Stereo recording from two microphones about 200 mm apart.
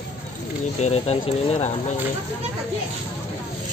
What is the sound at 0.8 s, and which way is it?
Speech, 30° left (ahead or behind).